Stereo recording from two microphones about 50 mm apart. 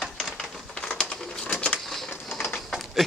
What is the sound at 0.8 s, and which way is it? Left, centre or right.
Bird, centre.